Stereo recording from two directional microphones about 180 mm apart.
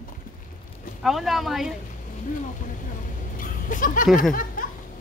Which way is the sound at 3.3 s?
50° left (ahead or behind).